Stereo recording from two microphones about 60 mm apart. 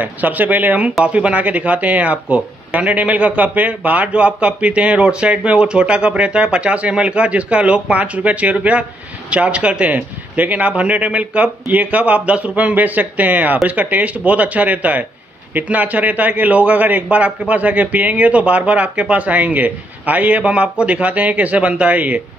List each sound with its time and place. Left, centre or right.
0.0 s speech: right